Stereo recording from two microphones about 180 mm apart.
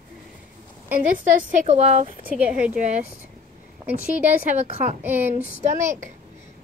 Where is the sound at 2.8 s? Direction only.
40° right (ahead or behind).